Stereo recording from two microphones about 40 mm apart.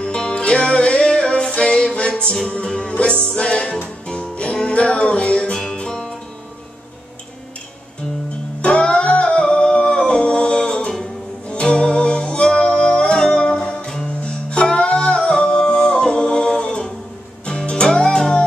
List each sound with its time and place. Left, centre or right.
0.0 s music: left
8.5 s music: left